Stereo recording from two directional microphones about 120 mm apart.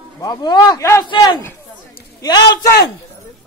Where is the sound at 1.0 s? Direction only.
40° left (ahead or behind).